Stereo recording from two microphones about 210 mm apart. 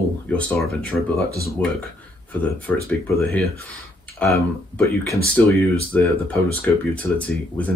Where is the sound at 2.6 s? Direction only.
5° left (ahead or behind).